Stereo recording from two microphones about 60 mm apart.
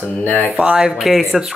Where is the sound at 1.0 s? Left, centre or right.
Centre.